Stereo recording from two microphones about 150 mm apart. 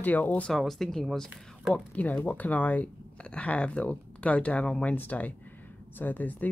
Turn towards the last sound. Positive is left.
turn(degrees=10)  # may be behind; listen again after turning